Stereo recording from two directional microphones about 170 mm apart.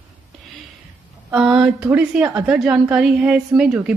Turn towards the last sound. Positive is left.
turn(degrees=-5)  # may be behind; listen again after turning